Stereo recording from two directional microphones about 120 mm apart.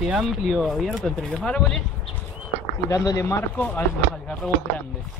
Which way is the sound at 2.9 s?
30° left (ahead or behind).